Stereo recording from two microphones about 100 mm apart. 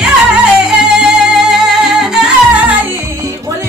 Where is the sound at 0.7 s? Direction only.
10° right (ahead or behind).